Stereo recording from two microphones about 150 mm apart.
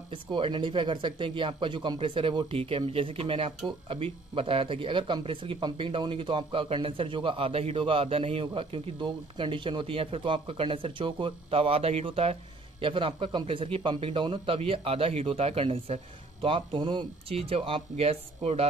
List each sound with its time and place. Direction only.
0.1 s speech: 35° right (ahead or behind)